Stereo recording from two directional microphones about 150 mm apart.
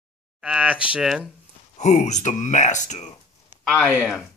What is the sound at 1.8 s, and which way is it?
Speech, 50° left (ahead or behind).